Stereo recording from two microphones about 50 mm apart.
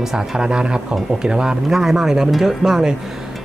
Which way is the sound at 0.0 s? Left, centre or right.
Centre.